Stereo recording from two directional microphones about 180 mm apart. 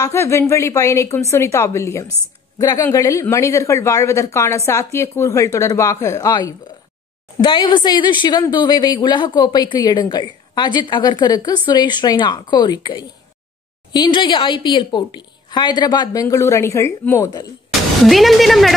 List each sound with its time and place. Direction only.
0.0 s a woman's voice: 15° left (ahead or behind)
18.0 s speech: centre (ahead or behind)